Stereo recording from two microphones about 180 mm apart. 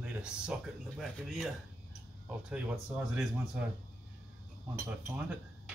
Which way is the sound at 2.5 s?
5° right (ahead or behind).